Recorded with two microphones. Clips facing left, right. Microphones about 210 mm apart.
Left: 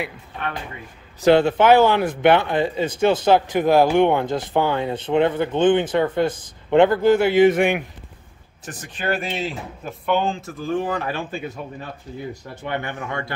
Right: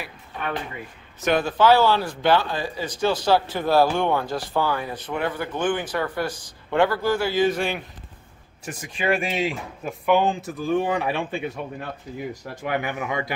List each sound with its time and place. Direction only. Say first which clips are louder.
1.2 s speech: left 5 dB; 25° left (ahead or behind)
8.6 s speech: right 1 dB; 10° right (ahead or behind)
12.6 s speech: right 1 dB; 10° right (ahead or behind)